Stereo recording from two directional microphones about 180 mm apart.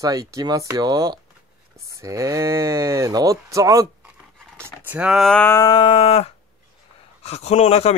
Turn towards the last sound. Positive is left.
turn(degrees=35)  # may be behind; listen again after turning